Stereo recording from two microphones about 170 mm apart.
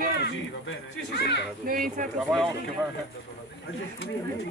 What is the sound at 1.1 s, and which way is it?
Speech, 75° left (ahead or behind).